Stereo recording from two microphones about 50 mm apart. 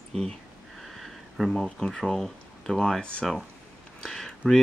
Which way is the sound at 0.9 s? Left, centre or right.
Centre.